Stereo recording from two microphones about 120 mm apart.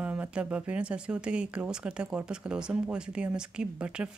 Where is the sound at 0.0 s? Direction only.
10° right (ahead or behind).